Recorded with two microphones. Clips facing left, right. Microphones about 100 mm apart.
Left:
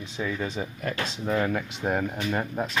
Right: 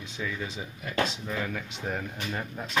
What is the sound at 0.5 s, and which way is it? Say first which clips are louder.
Speech: left 1 dB; 60° left (ahead or behind).